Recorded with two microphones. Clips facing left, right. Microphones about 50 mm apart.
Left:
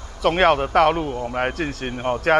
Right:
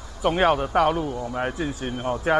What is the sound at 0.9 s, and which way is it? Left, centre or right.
Speech, left.